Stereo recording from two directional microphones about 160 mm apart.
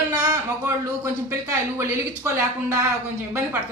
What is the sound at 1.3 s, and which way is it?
Speech, 15° right (ahead or behind).